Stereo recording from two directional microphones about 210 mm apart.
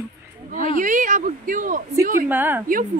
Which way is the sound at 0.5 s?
40° right (ahead or behind).